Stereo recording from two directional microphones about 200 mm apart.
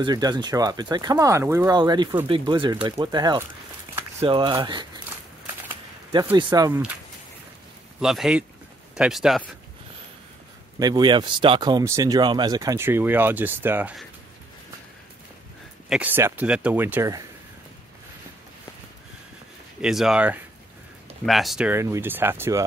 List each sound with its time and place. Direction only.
0.0 s speech: 20° right (ahead or behind)
6.3 s speech: 20° right (ahead or behind)
8.0 s speech: centre (ahead or behind)
10.8 s speech: 20° right (ahead or behind)
15.9 s speech: 10° right (ahead or behind)
19.8 s speech: centre (ahead or behind)